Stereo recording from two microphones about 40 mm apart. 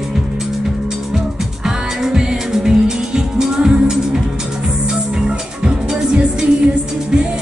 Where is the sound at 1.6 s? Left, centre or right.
Centre.